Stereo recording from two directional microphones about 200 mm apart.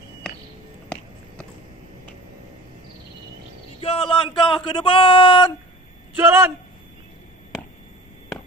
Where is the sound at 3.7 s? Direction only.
25° left (ahead or behind).